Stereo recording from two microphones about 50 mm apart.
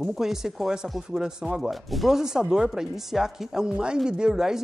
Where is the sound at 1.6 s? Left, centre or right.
Centre.